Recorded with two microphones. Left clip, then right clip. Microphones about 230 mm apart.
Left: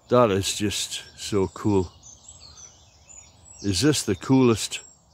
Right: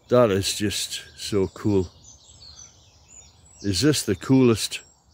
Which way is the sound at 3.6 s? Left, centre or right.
Centre.